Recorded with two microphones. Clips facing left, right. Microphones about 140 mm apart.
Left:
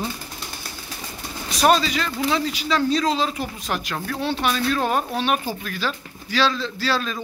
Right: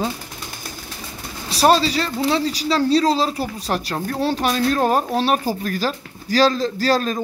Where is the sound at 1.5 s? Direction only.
30° right (ahead or behind).